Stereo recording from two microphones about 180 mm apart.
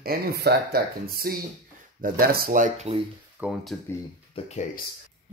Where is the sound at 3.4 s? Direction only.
5° right (ahead or behind).